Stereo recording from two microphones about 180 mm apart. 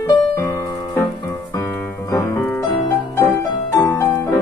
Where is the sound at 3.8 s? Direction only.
15° left (ahead or behind).